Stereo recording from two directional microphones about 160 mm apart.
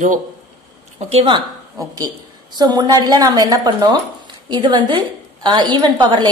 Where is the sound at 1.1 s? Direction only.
35° right (ahead or behind).